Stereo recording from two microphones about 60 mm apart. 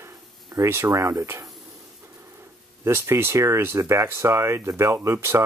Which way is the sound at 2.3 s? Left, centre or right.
Right.